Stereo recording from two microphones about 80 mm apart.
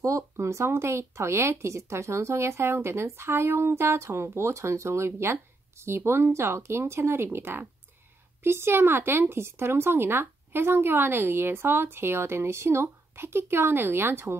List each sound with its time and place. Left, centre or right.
0.0 s speech: right